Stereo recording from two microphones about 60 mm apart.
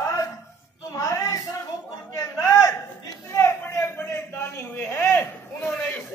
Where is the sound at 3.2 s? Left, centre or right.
Left.